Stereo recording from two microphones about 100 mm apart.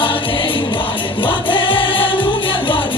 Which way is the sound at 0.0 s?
55° left (ahead or behind).